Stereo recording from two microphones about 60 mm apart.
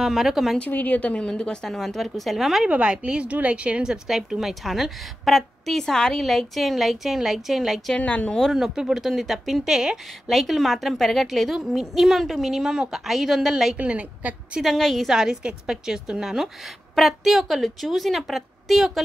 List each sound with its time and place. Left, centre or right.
0.0 s a woman's voice: centre
0.7 s a woman's voice: left; by 2.7 s centre
2.7 s a woman's voice: centre
8.0 s a woman's voice: left
8.5 s a woman's voice: centre
13.7 s a woman's voice: right
14.6 s a woman's voice: centre
15.0 s a woman's voice: centre